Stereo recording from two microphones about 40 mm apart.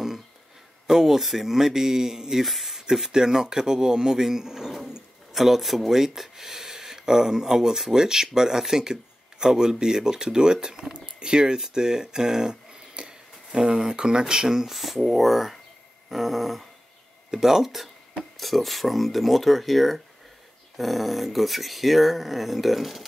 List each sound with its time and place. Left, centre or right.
0.8 s speech: centre